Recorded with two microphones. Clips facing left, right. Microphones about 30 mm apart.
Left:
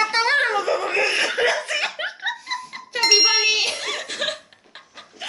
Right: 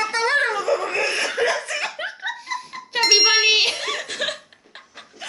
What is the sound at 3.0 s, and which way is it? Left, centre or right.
Child singing, centre.